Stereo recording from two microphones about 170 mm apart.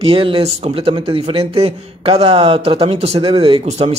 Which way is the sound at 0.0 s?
30° right (ahead or behind).